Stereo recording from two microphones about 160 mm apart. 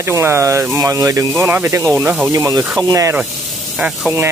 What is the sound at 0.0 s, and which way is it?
Speech, 15° right (ahead or behind).